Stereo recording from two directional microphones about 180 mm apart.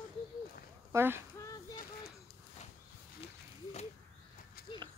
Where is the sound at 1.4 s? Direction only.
20° left (ahead or behind).